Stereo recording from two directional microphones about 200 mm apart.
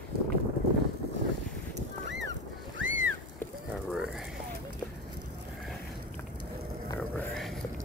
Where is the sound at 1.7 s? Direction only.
65° right (ahead or behind).